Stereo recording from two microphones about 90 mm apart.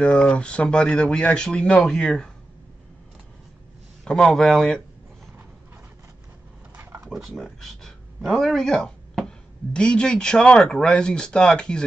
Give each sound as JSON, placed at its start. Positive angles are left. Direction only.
{"t": 0.0, "sound": "speech", "side_deg": 10}
{"t": 4.0, "sound": "speech", "side_deg": 5}
{"t": 6.8, "sound": "a sound", "side_deg": -30}
{"t": 7.1, "sound": "speech", "side_deg": 0}